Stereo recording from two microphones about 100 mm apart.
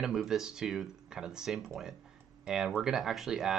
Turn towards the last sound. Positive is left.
turn(degrees=-5)  # may be behind; listen again after turning